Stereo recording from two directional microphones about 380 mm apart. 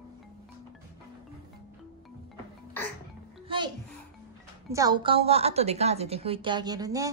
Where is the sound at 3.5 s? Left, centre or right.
Centre.